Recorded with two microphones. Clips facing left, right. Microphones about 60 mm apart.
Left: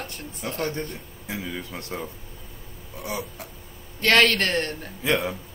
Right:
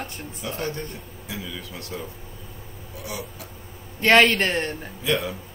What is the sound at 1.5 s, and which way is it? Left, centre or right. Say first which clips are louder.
Speech: left 2 dB; left.